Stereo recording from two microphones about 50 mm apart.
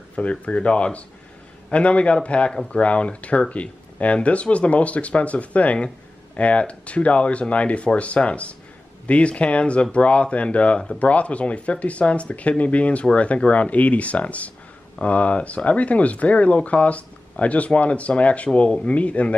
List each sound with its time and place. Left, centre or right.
0.1 s speech: left